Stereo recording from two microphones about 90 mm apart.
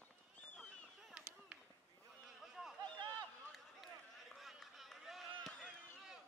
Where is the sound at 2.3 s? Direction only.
5° right (ahead or behind).